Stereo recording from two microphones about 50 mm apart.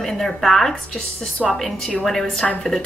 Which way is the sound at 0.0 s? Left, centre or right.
Centre.